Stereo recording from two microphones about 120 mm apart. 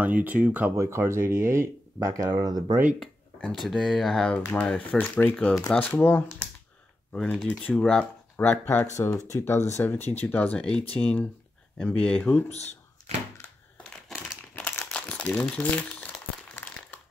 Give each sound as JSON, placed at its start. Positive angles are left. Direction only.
{"t": 0.0, "sound": "speech", "side_deg": -15}
{"t": 0.7, "sound": "speech", "side_deg": -25}
{"t": 3.5, "sound": "speech", "side_deg": 0}
{"t": 7.1, "sound": "speech", "side_deg": 5}
{"t": 8.9, "sound": "speech", "side_deg": 25}
{"t": 12.4, "sound": "speech", "side_deg": 65}
{"t": 13.8, "sound": "crumpling", "side_deg": 5}
{"t": 14.5, "sound": "crumpling", "side_deg": 15}